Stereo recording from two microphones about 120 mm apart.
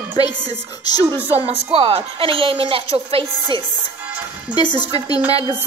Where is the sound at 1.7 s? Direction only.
55° right (ahead or behind).